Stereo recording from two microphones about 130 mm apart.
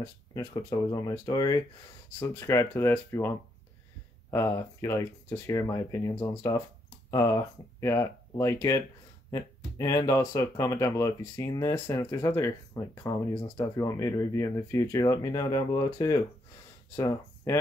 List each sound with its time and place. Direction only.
0.0 s speech: 25° left (ahead or behind)
2.1 s speech: 20° left (ahead or behind)